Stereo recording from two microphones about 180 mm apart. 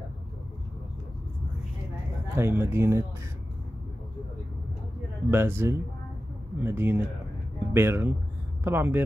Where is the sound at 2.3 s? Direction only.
15° right (ahead or behind).